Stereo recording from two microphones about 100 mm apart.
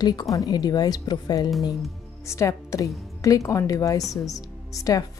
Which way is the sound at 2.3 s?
30° left (ahead or behind).